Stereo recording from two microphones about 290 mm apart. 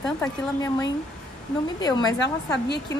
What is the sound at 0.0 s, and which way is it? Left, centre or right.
A woman's voice, centre.